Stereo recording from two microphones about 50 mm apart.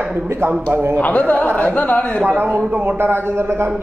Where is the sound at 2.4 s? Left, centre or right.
Right.